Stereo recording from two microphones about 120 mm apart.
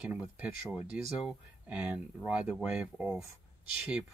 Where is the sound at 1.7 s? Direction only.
10° right (ahead or behind).